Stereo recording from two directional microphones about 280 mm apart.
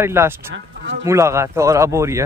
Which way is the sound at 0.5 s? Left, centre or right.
Right.